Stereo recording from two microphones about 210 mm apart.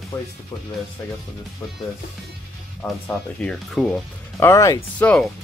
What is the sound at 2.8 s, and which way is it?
Speech, 5° left (ahead or behind).